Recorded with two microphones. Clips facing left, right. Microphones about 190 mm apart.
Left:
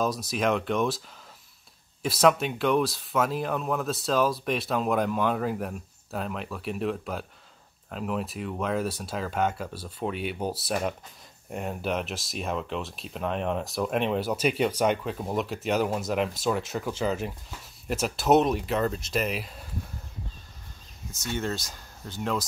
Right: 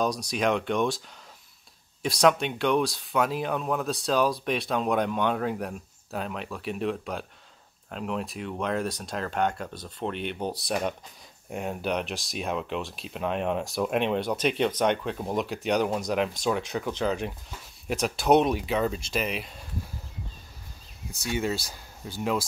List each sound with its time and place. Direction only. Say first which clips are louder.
0.0 s speech: even; 5° left (ahead or behind)
2.0 s speech: even; 5° left (ahead or behind)
21.3 s speech: right 2 dB; 10° right (ahead or behind)